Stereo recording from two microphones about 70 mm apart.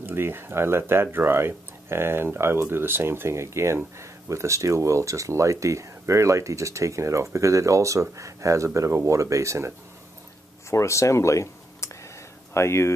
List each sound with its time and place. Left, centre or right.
0.0 s speech: right
10.7 s a sound: left
12.5 s speech: left